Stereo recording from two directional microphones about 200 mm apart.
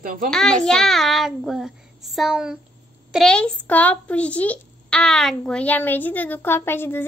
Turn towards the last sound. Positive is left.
turn(degrees=10)  # may be behind; listen again after turning